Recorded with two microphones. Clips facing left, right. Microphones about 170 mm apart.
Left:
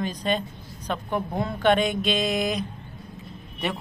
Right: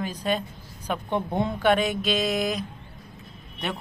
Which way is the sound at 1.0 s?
25° right (ahead or behind).